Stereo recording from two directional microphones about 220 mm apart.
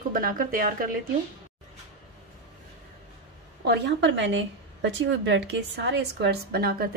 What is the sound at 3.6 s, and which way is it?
A woman's voice, 50° right (ahead or behind).